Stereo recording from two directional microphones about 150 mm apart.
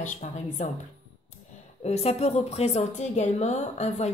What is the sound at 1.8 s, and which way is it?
A woman's voice, 45° left (ahead or behind).